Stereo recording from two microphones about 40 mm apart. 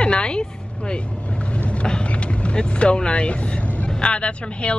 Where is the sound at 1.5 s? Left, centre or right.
Left.